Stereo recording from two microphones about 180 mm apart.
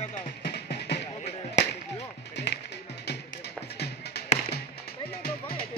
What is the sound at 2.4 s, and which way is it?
Music, 75° left (ahead or behind).